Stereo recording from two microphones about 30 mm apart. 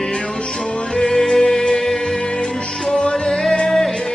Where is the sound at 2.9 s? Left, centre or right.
Left.